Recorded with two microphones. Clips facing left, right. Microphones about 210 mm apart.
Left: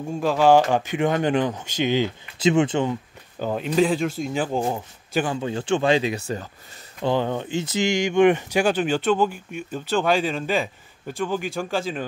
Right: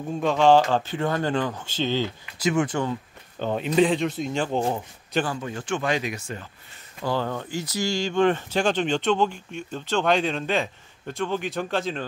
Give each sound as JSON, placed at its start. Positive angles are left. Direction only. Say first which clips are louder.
{"t": 0.0, "sound": "speech", "louder": "left 1 dB", "side_deg": 0}
{"t": 3.3, "sound": "speech", "louder": "even", "side_deg": 0}
{"t": 5.2, "sound": "speech", "louder": "left 4 dB", "side_deg": 25}
{"t": 7.0, "sound": "speech", "louder": "left 4 dB", "side_deg": 20}